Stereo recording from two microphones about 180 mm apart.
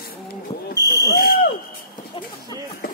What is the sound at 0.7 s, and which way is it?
Fire alarm, 20° right (ahead or behind).